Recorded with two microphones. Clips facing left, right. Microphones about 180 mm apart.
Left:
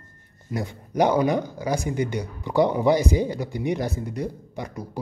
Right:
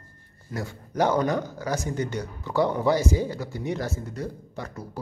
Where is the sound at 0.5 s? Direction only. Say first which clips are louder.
Left 4 dB; 15° left (ahead or behind).